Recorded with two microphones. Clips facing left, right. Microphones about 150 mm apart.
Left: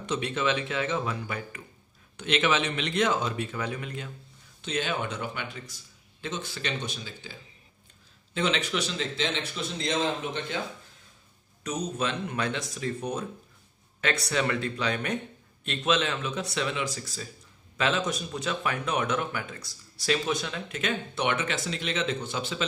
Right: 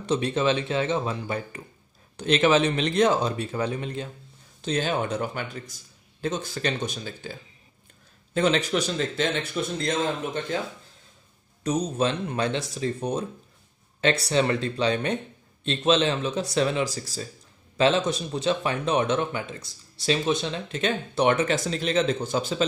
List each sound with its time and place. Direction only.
0.0 s speech: 35° right (ahead or behind)
8.4 s a man's voice: 40° right (ahead or behind)
11.6 s speech: 35° right (ahead or behind)